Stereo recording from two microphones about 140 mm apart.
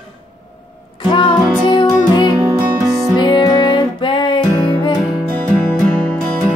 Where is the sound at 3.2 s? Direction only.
30° left (ahead or behind).